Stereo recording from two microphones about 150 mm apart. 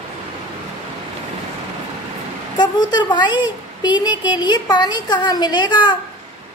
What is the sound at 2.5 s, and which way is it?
A woman's voice, 30° left (ahead or behind).